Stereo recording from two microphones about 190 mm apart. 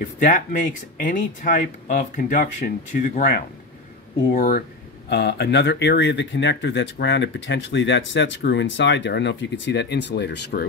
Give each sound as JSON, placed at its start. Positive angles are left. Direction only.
{"t": 0.2, "sound": "speech", "side_deg": 45}
{"t": 5.1, "sound": "speech", "side_deg": 60}